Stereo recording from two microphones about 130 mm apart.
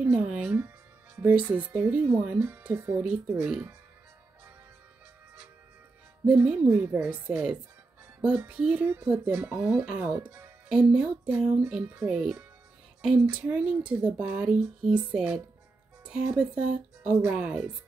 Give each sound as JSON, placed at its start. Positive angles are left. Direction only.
{"t": 0.0, "sound": "music", "side_deg": -10}
{"t": 1.4, "sound": "speech", "side_deg": -10}
{"t": 6.2, "sound": "speech", "side_deg": -10}
{"t": 9.3, "sound": "speech", "side_deg": -20}
{"t": 9.7, "sound": "speech", "side_deg": -5}